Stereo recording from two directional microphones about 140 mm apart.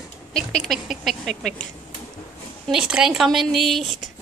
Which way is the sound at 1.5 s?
60° left (ahead or behind).